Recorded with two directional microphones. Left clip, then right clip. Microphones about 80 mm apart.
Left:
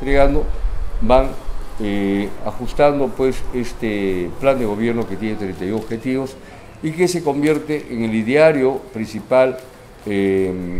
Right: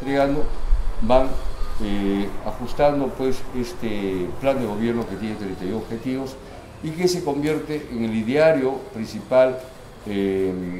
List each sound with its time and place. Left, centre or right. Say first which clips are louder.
0.0 s speech: left 5 dB; left
1.8 s speech: left 4 dB; left